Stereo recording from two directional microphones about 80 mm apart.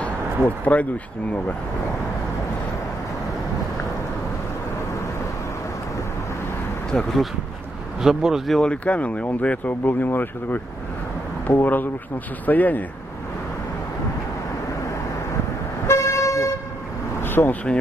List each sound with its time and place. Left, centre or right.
0.7 s speech: centre
6.9 s speech: centre
8.0 s speech: centre
8.5 s speech: centre
15.9 s vehicle: left
17.2 s vehicle: left